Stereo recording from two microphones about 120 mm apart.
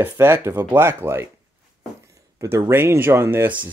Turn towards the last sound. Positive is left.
turn(degrees=-20)  # may be behind; listen again after turning